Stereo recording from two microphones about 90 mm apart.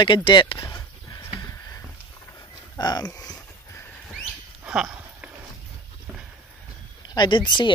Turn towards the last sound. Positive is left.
turn(degrees=60)  # may be behind; listen again after turning